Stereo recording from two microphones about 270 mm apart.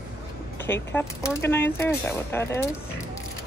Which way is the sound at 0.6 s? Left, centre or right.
Centre.